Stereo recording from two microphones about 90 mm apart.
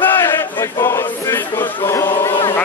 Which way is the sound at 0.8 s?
25° left (ahead or behind).